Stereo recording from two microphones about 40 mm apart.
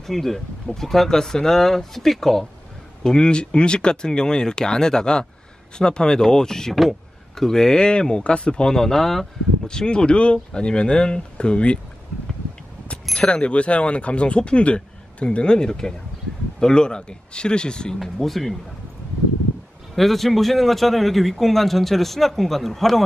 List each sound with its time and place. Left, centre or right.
0.0 s speech: centre
6.7 s speech: centre
9.7 s speech: left
13.3 s speech: left
18.0 s a man's voice: centre
20.0 s a man's voice: centre